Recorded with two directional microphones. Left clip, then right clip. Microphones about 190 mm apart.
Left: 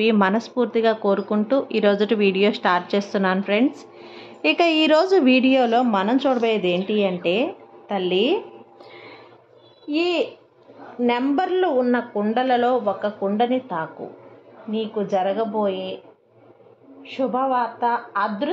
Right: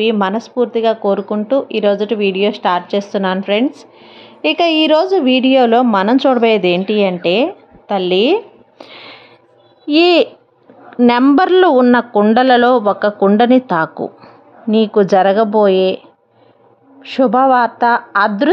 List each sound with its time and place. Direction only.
0.0 s speech: 10° right (ahead or behind)
5.5 s a woman's voice: 30° right (ahead or behind)
9.8 s speech: 45° right (ahead or behind)
17.0 s speech: 55° right (ahead or behind)